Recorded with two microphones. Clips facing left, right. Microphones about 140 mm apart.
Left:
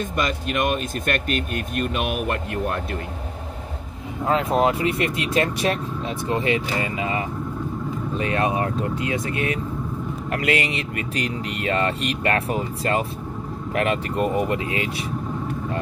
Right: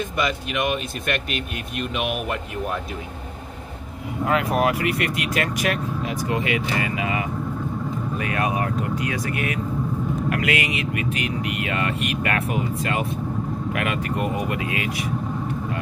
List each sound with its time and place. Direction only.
0.2 s speech: 45° left (ahead or behind)
4.3 s speech: 25° left (ahead or behind)